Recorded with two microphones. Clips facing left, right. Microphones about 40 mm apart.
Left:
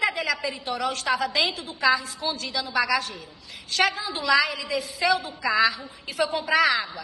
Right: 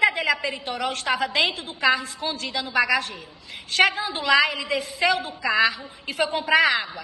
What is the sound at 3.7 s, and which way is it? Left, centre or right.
A woman's voice, right.